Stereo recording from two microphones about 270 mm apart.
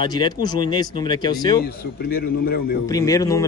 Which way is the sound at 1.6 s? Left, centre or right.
Left.